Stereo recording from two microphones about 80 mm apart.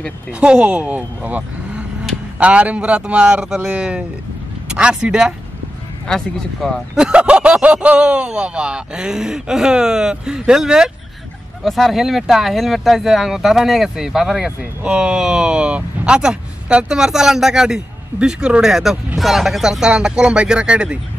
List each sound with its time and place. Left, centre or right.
0.3 s speech: centre
6.0 s speech: centre
7.0 s speech: centre